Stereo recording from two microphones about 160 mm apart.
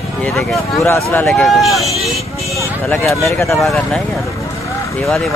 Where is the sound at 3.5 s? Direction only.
Centre (ahead or behind).